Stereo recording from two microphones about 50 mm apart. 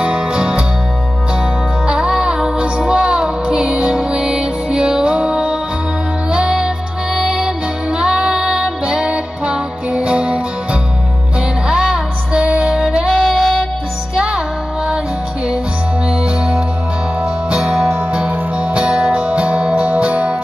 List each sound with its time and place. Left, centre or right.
0.0 s music: centre
1.9 s music: centre
7.2 s music: centre
13.1 s music: centre
14.1 s music: centre
16.1 s music: right